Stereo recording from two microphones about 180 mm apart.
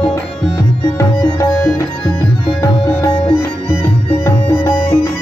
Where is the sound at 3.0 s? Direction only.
20° left (ahead or behind).